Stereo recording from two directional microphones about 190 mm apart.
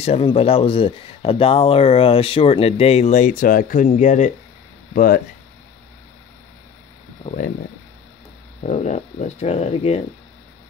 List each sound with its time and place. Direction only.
0.0 s speech: 30° left (ahead or behind); by 5.2 s 50° left (ahead or behind)
7.2 s speech: 45° left (ahead or behind)
8.6 s speech: 35° left (ahead or behind)